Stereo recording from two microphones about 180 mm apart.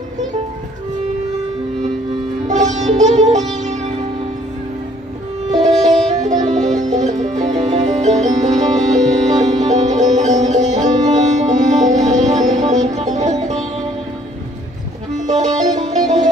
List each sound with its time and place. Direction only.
2.4 s sitar: 40° right (ahead or behind)
5.5 s music: 40° right (ahead or behind)
7.4 s music: 20° right (ahead or behind)
7.7 s music: 40° right (ahead or behind)
15.2 s music: 40° right (ahead or behind)